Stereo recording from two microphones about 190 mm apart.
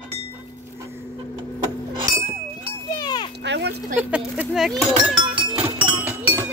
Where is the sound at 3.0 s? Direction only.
25° left (ahead or behind).